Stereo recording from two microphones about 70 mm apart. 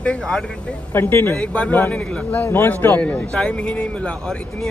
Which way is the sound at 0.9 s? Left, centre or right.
Left.